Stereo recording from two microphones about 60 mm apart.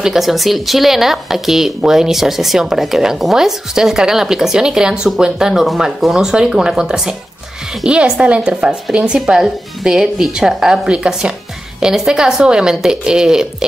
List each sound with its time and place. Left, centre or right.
0.0 s speech: centre